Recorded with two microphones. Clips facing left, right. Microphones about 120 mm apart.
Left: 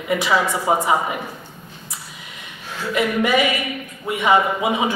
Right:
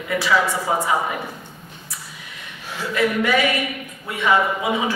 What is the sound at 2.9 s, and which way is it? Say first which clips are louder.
A man's voice: left 1 dB; 20° left (ahead or behind).